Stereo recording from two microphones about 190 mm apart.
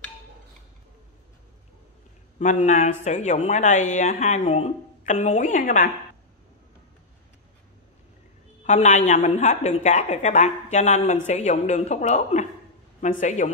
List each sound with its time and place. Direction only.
2.3 s speech: 40° left (ahead or behind)
8.6 s speech: 35° left (ahead or behind)